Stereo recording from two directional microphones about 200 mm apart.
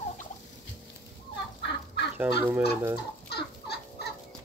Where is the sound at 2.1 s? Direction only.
10° right (ahead or behind).